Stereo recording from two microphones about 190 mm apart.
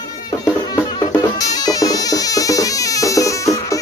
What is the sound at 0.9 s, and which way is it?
Music, 20° left (ahead or behind).